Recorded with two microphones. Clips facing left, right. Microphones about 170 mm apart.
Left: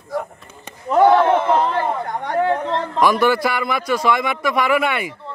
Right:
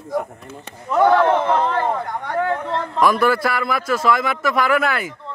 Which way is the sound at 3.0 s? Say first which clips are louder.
Left 1 dB; centre (ahead or behind).